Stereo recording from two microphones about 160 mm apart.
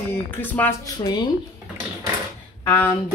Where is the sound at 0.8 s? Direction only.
25° left (ahead or behind).